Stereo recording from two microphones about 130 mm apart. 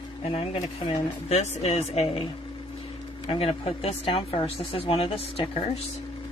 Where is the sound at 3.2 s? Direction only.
45° left (ahead or behind).